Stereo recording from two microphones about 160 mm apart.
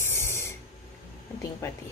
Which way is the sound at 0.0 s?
15° left (ahead or behind).